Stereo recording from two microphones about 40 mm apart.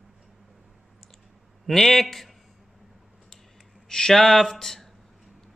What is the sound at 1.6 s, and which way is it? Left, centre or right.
Speech, centre.